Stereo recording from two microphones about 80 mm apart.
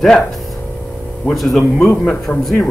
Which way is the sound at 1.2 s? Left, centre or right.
Centre.